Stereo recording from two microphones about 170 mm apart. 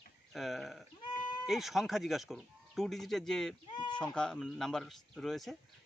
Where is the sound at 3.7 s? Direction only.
25° left (ahead or behind).